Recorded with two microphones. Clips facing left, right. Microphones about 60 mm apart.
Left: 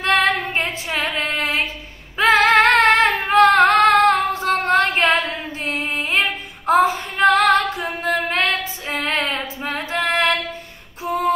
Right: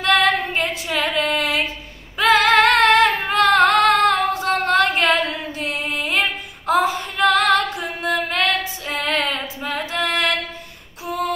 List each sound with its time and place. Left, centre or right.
0.0 s female singing: left